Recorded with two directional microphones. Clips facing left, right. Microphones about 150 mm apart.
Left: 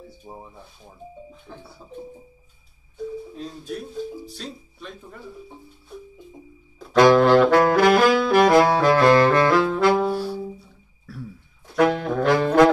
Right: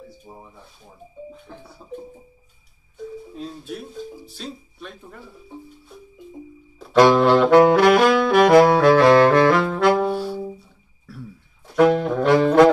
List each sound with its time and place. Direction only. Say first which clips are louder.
0.3 s speech: left 5 dB; 25° left (ahead or behind)
3.3 s speech: even; centre (ahead or behind)
6.8 s saxophone: even; centre (ahead or behind)
11.7 s brass instrument: right 3 dB; centre (ahead or behind)